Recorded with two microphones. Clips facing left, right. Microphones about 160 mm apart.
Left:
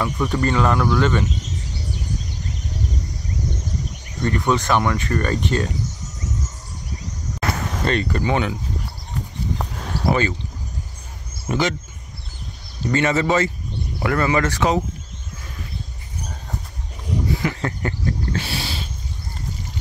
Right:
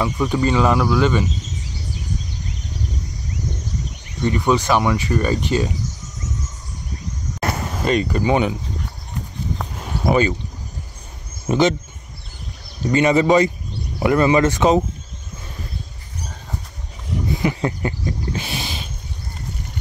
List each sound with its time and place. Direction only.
0.0 s speech: 15° right (ahead or behind)
4.2 s speech: 5° right (ahead or behind)
7.5 s speech: 10° right (ahead or behind)
9.8 s a sound: 10° right (ahead or behind)
11.4 s speech: 20° right (ahead or behind)
12.8 s speech: 15° right (ahead or behind)
17.4 s speech: 15° right (ahead or behind)